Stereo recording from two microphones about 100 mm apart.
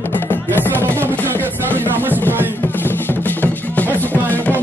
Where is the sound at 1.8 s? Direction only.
20° right (ahead or behind).